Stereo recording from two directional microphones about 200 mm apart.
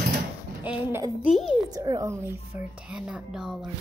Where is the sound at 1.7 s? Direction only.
15° right (ahead or behind).